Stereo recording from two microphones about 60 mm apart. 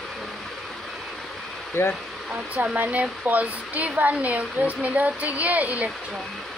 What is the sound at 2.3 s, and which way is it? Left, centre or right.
Hair dryer, centre.